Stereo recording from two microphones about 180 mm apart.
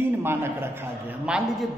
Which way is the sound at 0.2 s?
15° right (ahead or behind).